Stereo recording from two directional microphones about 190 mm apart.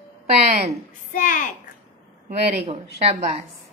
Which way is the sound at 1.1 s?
45° left (ahead or behind).